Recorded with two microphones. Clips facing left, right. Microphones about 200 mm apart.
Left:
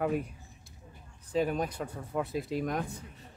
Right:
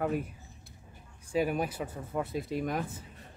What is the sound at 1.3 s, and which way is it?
Speech, 10° right (ahead or behind).